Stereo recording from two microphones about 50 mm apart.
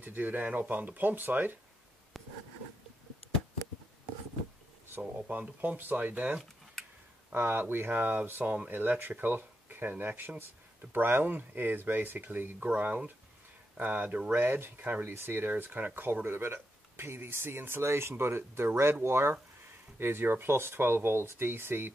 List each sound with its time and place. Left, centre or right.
0.0 s speech: right
2.1 s writing: centre
5.3 s speech: right
7.3 s speech: right
12.6 s speech: right
14.3 s speech: right
15.0 s speech: right